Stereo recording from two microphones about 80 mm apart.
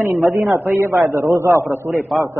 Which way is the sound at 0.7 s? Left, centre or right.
Right.